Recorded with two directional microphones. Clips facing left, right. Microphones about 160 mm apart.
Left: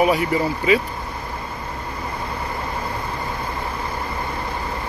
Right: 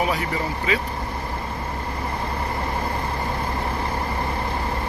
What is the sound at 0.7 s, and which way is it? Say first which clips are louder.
Speech: left 7 dB; 10° left (ahead or behind).